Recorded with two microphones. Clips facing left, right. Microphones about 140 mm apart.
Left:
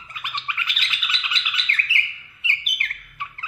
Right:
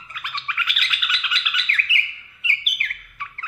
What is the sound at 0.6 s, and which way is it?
Bird, 30° left (ahead or behind).